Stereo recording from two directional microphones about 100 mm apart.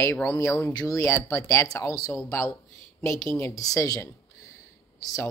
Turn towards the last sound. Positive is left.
turn(degrees=35)  # may be behind; listen again after turning